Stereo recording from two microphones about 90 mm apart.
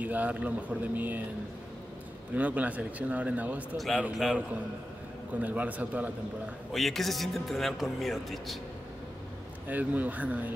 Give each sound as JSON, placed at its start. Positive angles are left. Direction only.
{"t": 0.0, "sound": "speech", "side_deg": -15}
{"t": 2.3, "sound": "speech", "side_deg": -15}
{"t": 3.7, "sound": "speech", "side_deg": 0}
{"t": 5.4, "sound": "speech", "side_deg": -15}
{"t": 6.7, "sound": "speech", "side_deg": 0}
{"t": 9.7, "sound": "speech", "side_deg": -20}